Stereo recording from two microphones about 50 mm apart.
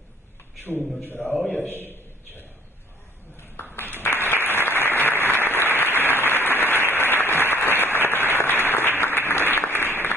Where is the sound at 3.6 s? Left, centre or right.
Left.